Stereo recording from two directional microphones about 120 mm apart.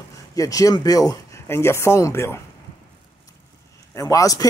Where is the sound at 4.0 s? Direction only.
30° left (ahead or behind).